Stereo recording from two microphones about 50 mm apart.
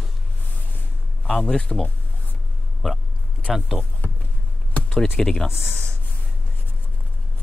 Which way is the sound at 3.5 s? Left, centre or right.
Centre.